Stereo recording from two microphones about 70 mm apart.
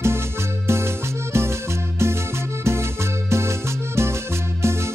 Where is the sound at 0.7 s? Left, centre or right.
Right.